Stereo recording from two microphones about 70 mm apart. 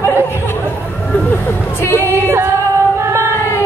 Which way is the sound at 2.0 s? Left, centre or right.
Right.